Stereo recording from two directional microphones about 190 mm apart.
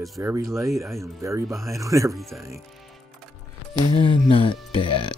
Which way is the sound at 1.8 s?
15° right (ahead or behind).